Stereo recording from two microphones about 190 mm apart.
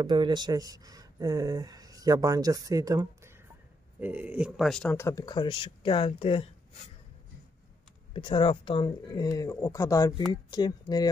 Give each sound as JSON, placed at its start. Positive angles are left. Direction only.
{"t": 0.0, "sound": "speech", "side_deg": -25}
{"t": 4.9, "sound": "speech", "side_deg": 15}
{"t": 8.1, "sound": "speech", "side_deg": 25}